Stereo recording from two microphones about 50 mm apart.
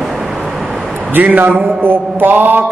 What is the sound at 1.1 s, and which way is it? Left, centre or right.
A man's voice, right.